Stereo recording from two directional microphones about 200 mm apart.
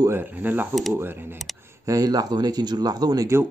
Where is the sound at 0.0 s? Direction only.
10° right (ahead or behind).